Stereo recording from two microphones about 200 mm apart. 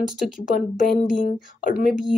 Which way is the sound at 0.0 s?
5° right (ahead or behind).